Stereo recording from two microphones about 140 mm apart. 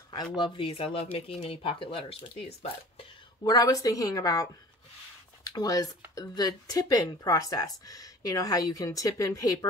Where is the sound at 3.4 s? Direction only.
30° left (ahead or behind).